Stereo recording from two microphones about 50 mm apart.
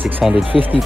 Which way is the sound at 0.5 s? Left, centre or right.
Centre.